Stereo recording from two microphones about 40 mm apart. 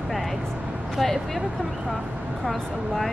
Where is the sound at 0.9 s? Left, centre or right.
Centre.